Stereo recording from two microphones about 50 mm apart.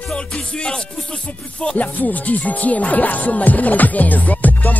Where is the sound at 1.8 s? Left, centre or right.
Left.